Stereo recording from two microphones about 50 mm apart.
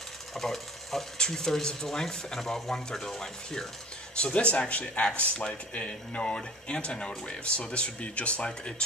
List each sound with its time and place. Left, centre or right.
0.3 s speech: centre
4.2 s speech: left